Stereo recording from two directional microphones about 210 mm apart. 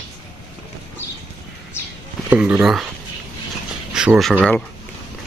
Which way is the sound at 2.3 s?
5° right (ahead or behind).